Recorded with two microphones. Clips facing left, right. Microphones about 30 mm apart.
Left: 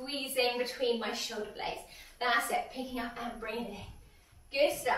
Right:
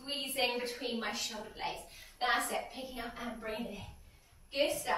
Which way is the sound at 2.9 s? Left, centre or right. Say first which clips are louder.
Left 6 dB; left.